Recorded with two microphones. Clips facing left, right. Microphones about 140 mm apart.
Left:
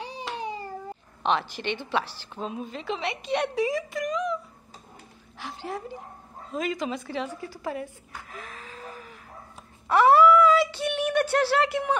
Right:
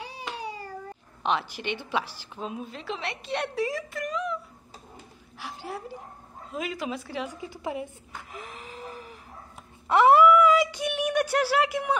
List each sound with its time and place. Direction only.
1.2 s a woman's voice: 10° right (ahead or behind)
5.4 s a woman's voice: 10° right (ahead or behind)
7.4 s a woman's voice: 20° right (ahead or behind)
8.3 s a sound: 20° right (ahead or behind)